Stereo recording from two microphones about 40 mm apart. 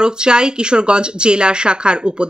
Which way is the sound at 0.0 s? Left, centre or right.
Right.